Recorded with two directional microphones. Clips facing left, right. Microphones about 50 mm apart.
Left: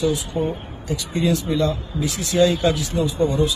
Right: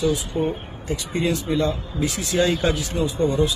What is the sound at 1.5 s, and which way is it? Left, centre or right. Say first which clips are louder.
Speech: left 1 dB; right.